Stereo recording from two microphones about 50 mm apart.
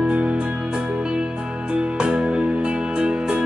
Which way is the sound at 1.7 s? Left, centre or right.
Centre.